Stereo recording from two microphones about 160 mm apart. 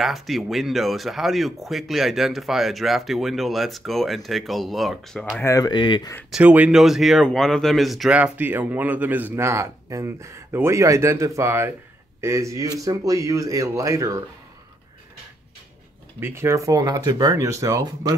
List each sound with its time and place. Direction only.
0.0 s speech: centre (ahead or behind)
5.4 s speech: 20° left (ahead or behind)
6.3 s speech: 10° right (ahead or behind)
16.2 s speech: 15° right (ahead or behind)